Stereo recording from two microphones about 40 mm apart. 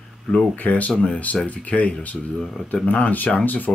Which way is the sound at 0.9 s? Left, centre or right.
Centre.